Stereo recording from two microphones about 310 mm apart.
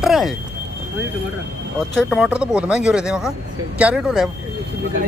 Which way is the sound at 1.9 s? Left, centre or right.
Centre.